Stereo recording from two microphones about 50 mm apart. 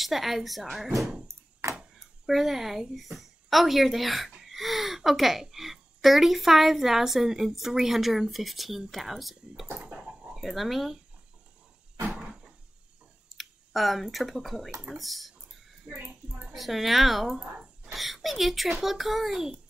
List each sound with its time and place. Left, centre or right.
0.0 s a woman's voice: centre
2.0 s a woman's voice: centre
9.8 s dog: right
10.3 s a woman's voice: centre
12.1 s a sound: centre
13.4 s a woman's voice: centre
15.9 s a child's voice: centre
16.5 s a woman's voice: centre